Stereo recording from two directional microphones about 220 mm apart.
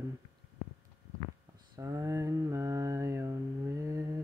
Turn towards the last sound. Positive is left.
turn(degrees=-15)  # may be behind; listen again after turning